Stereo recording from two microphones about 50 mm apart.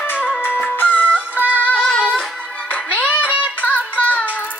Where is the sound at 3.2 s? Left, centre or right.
Right.